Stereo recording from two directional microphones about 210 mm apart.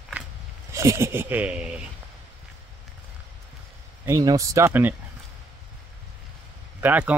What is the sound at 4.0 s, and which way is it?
Speech, 15° right (ahead or behind).